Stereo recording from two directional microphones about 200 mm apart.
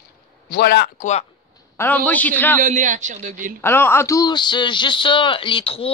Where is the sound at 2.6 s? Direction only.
40° right (ahead or behind).